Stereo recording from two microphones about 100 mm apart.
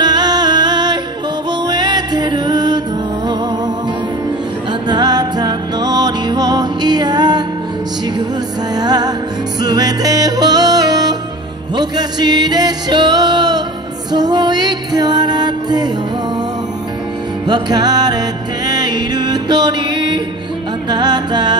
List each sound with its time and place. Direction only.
0.0 s music: 45° right (ahead or behind)
4.8 s music: 45° right (ahead or behind)
8.7 s music: 45° right (ahead or behind)
17.5 s music: 45° right (ahead or behind)